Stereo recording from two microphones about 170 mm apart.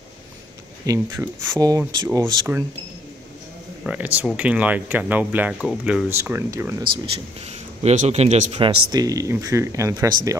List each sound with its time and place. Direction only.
0.8 s speech: 15° right (ahead or behind)
3.8 s speech: 10° right (ahead or behind)
6.0 s speech: 15° right (ahead or behind)
7.4 s speech: 40° right (ahead or behind)
8.5 s speech: 25° right (ahead or behind)